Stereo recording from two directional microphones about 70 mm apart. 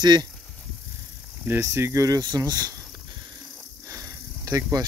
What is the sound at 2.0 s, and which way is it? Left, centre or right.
Speech, right.